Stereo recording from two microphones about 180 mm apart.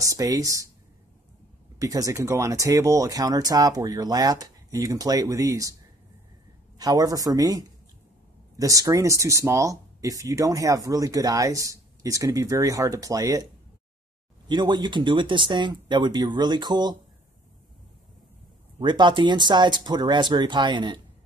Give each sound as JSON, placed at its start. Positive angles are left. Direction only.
{"t": 0.0, "sound": "speech", "side_deg": -20}
{"t": 1.8, "sound": "speech", "side_deg": -20}
{"t": 6.8, "sound": "speech", "side_deg": -20}
{"t": 14.5, "sound": "speech", "side_deg": -25}
{"t": 18.8, "sound": "speech", "side_deg": -25}